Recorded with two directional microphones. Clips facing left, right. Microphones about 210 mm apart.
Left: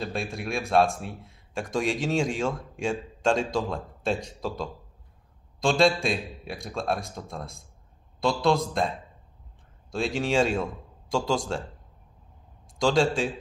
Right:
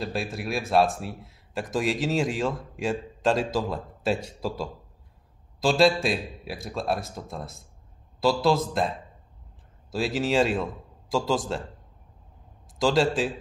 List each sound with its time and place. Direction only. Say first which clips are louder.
0.0 s a man's voice: right 1 dB; 5° right (ahead or behind)
12.7 s a man's voice: even; centre (ahead or behind)